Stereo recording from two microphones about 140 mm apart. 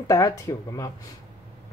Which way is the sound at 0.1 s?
25° left (ahead or behind).